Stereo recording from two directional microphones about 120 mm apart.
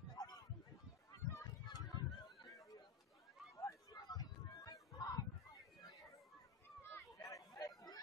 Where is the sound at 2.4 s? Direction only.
30° left (ahead or behind).